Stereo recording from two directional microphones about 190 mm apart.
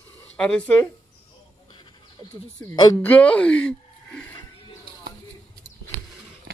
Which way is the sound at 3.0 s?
10° left (ahead or behind).